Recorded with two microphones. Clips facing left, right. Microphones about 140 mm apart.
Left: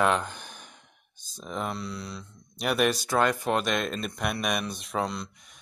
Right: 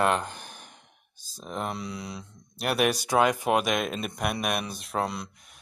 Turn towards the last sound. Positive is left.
turn(degrees=-5)  # may be behind; listen again after turning